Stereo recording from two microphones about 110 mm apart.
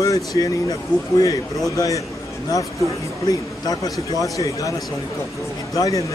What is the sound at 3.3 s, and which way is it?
Speech, 35° left (ahead or behind).